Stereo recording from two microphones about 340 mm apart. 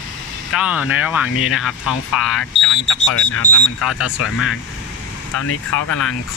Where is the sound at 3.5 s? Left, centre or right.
Left.